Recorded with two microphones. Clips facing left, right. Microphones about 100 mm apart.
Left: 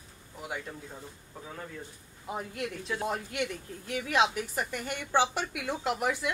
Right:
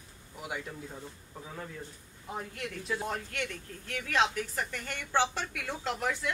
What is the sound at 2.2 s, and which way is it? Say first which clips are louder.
Speech: left 3 dB; 15° left (ahead or behind).